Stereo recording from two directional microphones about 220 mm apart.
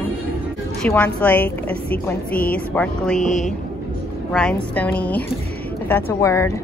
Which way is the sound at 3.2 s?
35° left (ahead or behind).